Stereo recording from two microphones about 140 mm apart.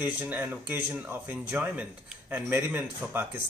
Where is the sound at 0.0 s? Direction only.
10° right (ahead or behind).